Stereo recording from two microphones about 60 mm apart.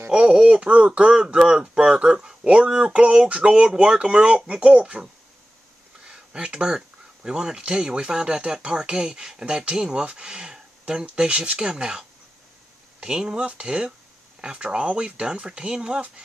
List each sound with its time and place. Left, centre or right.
0.1 s speech: centre
6.0 s a sound: centre
7.2 s speech: centre